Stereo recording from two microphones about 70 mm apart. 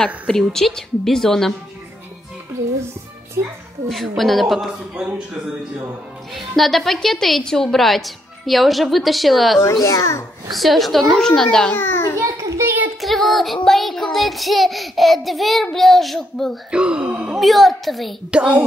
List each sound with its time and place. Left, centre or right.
0.0 s speech: centre
4.2 s speech: centre
6.3 s speech: centre
9.8 s a child's voice: left
10.5 s speech: centre
11.7 s a child's voice: left
12.2 s a sound: right
13.0 s speech: centre
16.7 s speech: centre
17.4 s speech: centre
18.3 s a child's voice: centre